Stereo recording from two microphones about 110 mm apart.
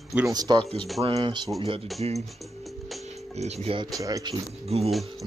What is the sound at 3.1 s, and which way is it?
Music, 85° right.